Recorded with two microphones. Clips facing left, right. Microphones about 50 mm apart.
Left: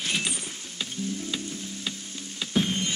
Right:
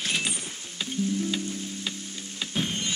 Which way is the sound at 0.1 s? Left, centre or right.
Centre.